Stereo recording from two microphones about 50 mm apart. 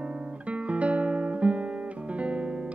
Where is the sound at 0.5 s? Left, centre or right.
Right.